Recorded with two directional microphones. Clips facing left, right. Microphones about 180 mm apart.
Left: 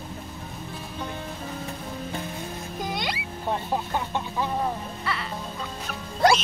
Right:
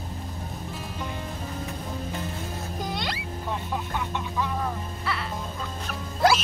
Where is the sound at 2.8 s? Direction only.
5° left (ahead or behind).